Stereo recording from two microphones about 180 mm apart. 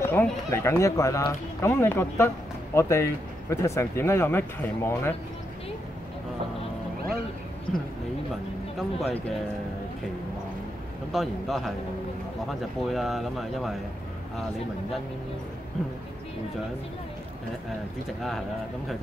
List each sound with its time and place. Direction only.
0.1 s speech: 15° left (ahead or behind)
8.7 s speech: centre (ahead or behind)
11.1 s speech: centre (ahead or behind)